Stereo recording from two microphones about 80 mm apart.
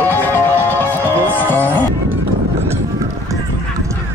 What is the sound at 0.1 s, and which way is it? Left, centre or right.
Music, left.